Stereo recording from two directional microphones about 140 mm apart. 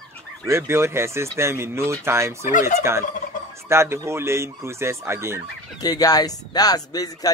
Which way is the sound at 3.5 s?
20° right (ahead or behind).